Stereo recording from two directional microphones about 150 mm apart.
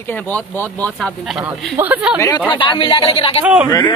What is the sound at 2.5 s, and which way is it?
Speech, 35° left (ahead or behind).